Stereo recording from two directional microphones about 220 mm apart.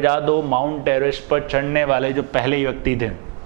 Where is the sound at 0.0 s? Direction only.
15° right (ahead or behind).